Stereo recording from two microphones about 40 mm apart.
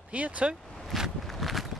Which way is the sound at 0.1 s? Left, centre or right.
Right.